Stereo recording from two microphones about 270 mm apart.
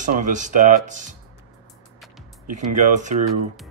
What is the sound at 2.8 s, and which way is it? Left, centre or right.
Speech, right.